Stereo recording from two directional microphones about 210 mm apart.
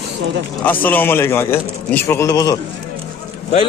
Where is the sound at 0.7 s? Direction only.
10° left (ahead or behind).